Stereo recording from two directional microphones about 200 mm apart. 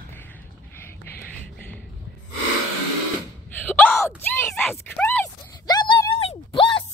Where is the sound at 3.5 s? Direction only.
10° left (ahead or behind).